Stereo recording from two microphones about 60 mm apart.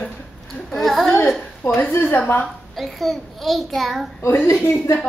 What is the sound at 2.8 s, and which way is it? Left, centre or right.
A child's voice, centre.